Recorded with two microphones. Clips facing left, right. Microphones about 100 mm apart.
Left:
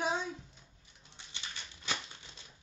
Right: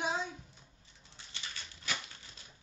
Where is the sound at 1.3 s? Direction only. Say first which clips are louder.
Even; 20° left (ahead or behind).